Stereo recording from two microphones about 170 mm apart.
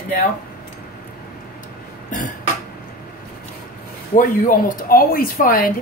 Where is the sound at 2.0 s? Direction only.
50° left (ahead or behind).